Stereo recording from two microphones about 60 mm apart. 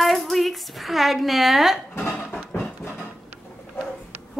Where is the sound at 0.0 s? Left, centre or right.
Centre.